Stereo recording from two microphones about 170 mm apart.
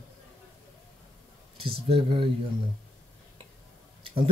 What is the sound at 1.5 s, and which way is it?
Speech, 35° right (ahead or behind).